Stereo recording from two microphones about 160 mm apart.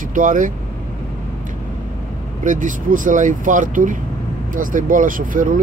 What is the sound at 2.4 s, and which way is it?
Speech, 55° right (ahead or behind).